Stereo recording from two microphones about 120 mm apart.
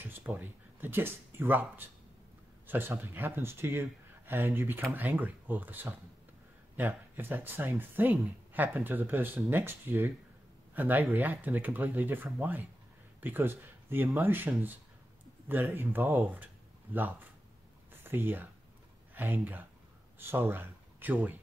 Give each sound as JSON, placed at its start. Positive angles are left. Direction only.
{"t": 0.4, "sound": "speech", "side_deg": -15}
{"t": 18.0, "sound": "speech", "side_deg": -15}